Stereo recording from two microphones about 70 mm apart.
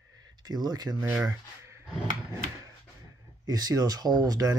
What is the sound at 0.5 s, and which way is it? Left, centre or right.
Speech, right.